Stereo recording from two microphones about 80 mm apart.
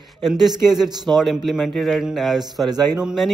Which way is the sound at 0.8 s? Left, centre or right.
Right.